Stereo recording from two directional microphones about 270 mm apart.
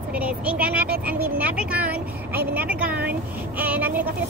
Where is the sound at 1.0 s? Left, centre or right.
Right.